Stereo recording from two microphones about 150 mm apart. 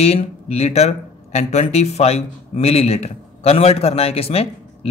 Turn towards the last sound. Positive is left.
turn(degrees=40)  # may be behind; listen again after turning